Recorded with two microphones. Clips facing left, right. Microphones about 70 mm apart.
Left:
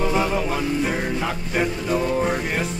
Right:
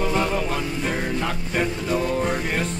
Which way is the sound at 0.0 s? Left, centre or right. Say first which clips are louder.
Left 1 dB; centre.